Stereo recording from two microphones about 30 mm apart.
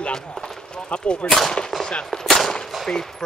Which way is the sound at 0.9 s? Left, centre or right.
Left.